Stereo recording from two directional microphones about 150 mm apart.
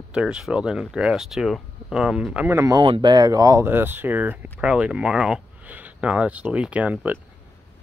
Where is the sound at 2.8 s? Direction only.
30° right (ahead or behind); by 7.1 s 10° right (ahead or behind).